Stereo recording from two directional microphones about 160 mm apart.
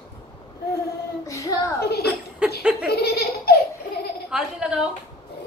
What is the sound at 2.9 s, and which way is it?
Child singing, 85° left.